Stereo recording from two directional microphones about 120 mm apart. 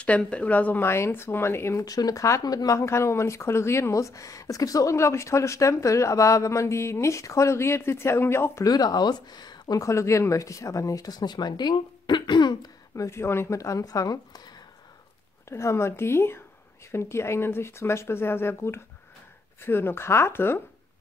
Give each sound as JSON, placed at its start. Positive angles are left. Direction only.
{"t": 0.0, "sound": "speech", "side_deg": 10}
{"t": 8.6, "sound": "speech", "side_deg": 35}
{"t": 12.9, "sound": "speech", "side_deg": 25}